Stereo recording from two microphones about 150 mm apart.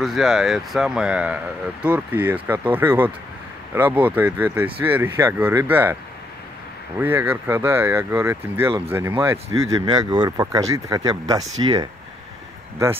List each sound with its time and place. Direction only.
0.0 s speech: centre (ahead or behind)
7.0 s speech: 15° right (ahead or behind)